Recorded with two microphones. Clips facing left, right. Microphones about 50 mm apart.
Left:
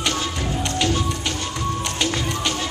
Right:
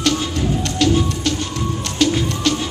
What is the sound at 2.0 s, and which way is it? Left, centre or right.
Music, centre.